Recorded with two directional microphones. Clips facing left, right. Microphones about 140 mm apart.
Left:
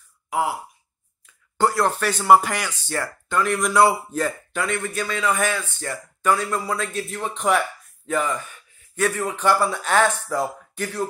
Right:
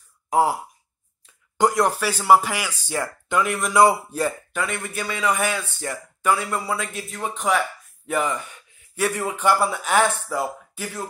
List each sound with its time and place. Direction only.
0.3 s speech: 40° right (ahead or behind)
1.6 s speech: 15° right (ahead or behind)
3.4 s speech: 5° right (ahead or behind)
7.3 s speech: centre (ahead or behind)
8.1 s speech: 15° right (ahead or behind)